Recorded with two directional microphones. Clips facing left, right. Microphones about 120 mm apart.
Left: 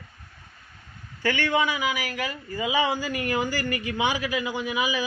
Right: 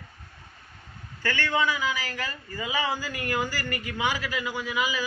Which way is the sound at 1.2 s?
15° left (ahead or behind).